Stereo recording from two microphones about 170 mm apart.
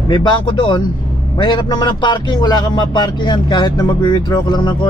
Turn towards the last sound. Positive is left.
turn(degrees=30)  # may be behind; listen again after turning